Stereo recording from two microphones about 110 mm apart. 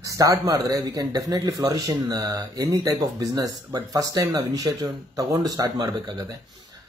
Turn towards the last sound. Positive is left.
turn(degrees=-35)  # may be behind; listen again after turning